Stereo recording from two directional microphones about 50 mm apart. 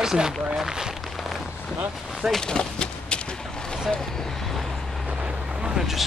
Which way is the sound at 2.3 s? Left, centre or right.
Centre.